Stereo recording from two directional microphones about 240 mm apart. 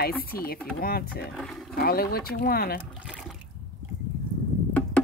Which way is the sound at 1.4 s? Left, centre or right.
Centre.